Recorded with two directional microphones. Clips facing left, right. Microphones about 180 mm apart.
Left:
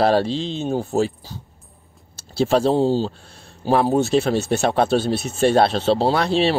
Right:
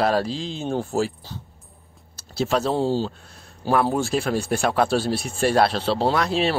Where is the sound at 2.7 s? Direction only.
15° left (ahead or behind).